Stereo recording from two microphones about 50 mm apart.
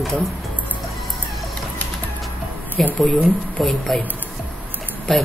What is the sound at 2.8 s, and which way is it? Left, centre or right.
A woman's voice, centre.